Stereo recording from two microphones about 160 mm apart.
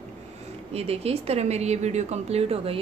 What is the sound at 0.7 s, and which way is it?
A woman's voice, 40° right (ahead or behind).